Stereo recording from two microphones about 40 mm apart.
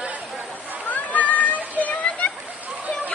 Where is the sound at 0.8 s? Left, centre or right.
Left.